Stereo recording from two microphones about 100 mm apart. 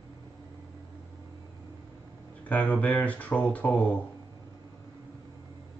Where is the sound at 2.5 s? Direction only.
15° left (ahead or behind).